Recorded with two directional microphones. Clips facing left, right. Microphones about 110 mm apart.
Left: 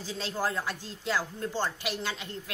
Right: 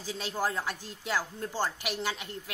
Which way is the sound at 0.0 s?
15° right (ahead or behind).